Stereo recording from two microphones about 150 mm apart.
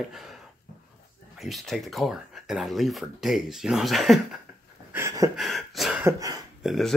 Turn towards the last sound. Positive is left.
turn(degrees=0)  # may be behind; listen again after turning